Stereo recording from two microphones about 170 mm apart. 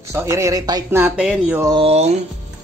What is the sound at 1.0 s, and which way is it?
Speech, 5° right (ahead or behind).